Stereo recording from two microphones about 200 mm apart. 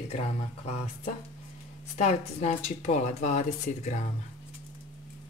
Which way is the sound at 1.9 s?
35° left (ahead or behind).